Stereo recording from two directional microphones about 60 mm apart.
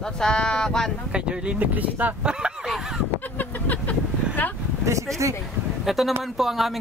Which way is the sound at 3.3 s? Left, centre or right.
Left.